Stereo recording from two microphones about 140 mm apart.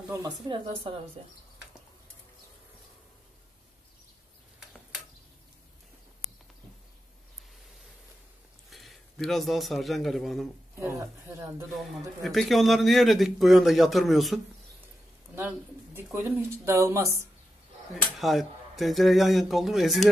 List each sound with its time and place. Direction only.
0.1 s speech: 30° right (ahead or behind)
1.2 s speech: 50° right (ahead or behind)
8.6 s a man's voice: centre (ahead or behind)
11.3 s speech: 20° right (ahead or behind)
11.7 s a man's voice: centre (ahead or behind)
15.3 s a sound: 15° right (ahead or behind)
16.3 s speech: 20° right (ahead or behind)
18.2 s a man's voice: centre (ahead or behind)